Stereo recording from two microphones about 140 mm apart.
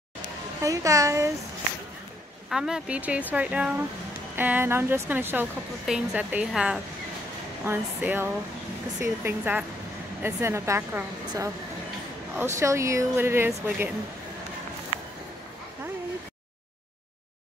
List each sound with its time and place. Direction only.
0.6 s a woman's voice: 25° right (ahead or behind)
2.5 s a woman's voice: 5° right (ahead or behind)